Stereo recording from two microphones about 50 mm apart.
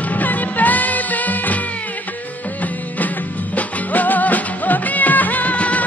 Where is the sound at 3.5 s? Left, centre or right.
Left.